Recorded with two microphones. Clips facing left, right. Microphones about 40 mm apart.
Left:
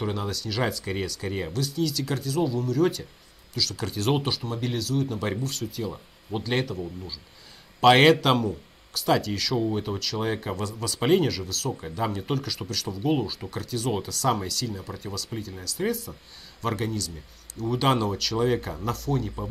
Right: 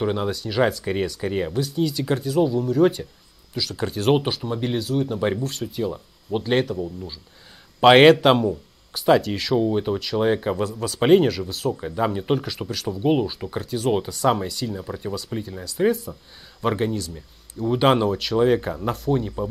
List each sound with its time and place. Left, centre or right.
0.0 s speech: right
7.8 s speech: right
11.1 s speech: centre